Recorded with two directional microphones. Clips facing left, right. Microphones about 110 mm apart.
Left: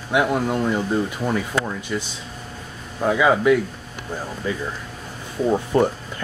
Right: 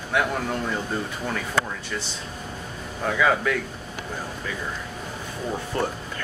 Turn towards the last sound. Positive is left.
turn(degrees=20)  # may be behind; listen again after turning